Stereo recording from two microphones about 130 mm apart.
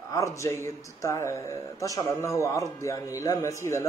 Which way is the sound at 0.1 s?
25° left (ahead or behind).